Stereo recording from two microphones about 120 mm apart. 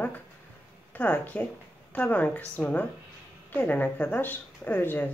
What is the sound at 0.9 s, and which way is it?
Speech, 10° left (ahead or behind).